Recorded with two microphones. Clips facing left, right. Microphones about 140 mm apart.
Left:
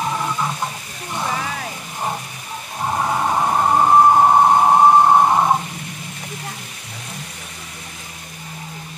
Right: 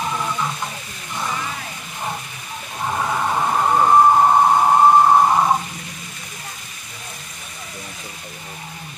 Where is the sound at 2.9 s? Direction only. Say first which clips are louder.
Left 2 dB; 20° left (ahead or behind).